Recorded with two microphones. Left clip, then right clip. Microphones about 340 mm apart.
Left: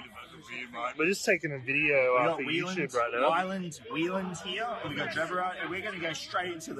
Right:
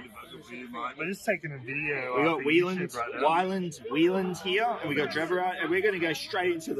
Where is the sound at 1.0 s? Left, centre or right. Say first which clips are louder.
Left 5 dB; left.